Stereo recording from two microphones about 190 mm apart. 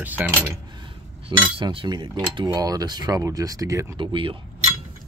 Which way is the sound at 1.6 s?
25° right (ahead or behind).